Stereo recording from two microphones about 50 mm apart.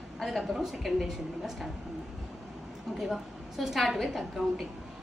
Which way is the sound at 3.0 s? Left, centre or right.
Centre.